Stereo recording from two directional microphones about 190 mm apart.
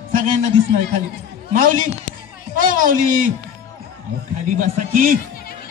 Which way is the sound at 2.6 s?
45° right (ahead or behind).